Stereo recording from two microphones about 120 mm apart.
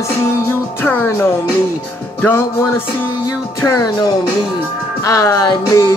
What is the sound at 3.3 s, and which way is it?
Music, 30° left (ahead or behind).